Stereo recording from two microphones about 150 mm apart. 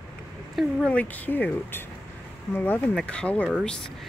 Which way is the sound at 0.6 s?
10° left (ahead or behind).